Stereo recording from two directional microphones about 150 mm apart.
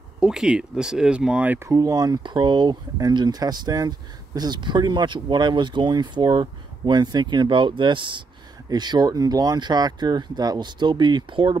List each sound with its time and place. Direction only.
0.2 s speech: 5° right (ahead or behind)
1.7 s speech: 25° right (ahead or behind)